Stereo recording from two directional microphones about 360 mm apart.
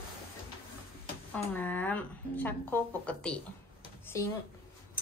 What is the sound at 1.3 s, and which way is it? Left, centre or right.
Speech, centre.